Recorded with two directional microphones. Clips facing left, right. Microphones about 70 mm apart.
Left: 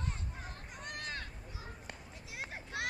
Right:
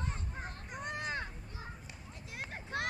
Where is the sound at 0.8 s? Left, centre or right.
Right.